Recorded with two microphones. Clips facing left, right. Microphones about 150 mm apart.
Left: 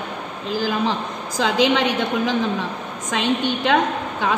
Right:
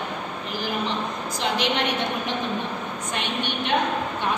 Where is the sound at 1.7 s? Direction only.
90° left.